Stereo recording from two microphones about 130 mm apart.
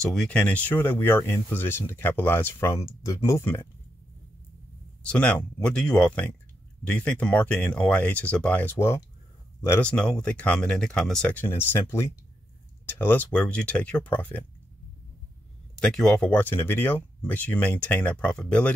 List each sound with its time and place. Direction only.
0.0 s speech: 5° left (ahead or behind); by 3.6 s 20° left (ahead or behind)
5.0 s speech: 10° left (ahead or behind)
15.8 s speech: 5° left (ahead or behind)